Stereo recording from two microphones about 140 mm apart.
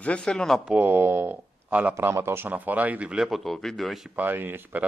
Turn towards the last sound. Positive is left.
turn(degrees=-15)  # may be behind; listen again after turning